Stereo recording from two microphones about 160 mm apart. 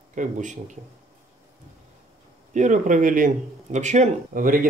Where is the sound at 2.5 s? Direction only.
50° right (ahead or behind).